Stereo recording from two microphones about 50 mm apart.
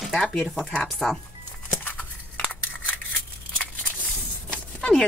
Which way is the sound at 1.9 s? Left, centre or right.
Left.